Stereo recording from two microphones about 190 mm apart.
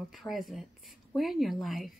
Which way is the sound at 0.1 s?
Centre (ahead or behind).